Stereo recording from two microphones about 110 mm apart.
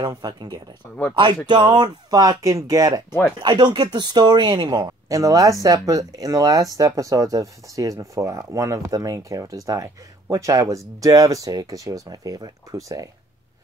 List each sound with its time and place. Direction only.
0.0 s speech: 40° right (ahead or behind)
3.1 s speech: 15° left (ahead or behind)
3.4 s speech: 40° right (ahead or behind)